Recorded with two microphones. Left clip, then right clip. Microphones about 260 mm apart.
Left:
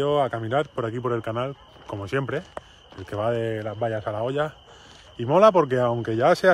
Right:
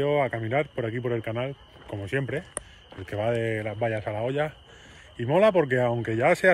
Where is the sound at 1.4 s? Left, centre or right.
Centre.